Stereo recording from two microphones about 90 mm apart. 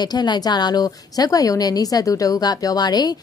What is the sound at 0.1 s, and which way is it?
A woman's voice, 50° left (ahead or behind).